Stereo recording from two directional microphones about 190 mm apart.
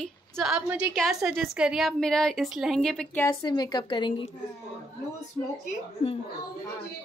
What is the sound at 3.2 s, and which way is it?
Speech, 20° left (ahead or behind).